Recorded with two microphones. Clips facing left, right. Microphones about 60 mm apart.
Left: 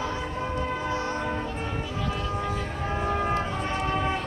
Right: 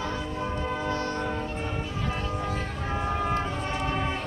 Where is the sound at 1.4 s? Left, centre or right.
Right.